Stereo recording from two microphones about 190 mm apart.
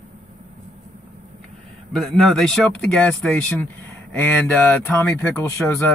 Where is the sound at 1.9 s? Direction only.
Centre (ahead or behind).